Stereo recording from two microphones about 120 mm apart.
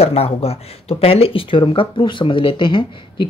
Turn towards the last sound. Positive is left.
turn(degrees=45)  # may be behind; listen again after turning